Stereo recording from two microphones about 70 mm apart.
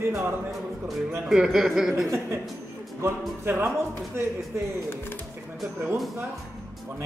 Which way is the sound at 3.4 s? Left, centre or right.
Right.